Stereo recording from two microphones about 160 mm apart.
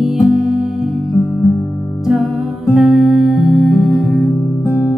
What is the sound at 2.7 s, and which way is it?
Music, centre (ahead or behind).